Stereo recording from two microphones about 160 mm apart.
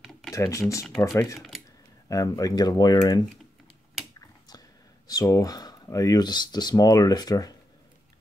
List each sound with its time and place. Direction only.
0.3 s speech: 20° left (ahead or behind)
0.8 s speech: centre (ahead or behind)
2.0 s speech: 20° left (ahead or behind)
4.5 s speech: 25° left (ahead or behind)